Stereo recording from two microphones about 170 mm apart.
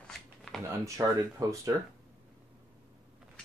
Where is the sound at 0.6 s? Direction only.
15° right (ahead or behind).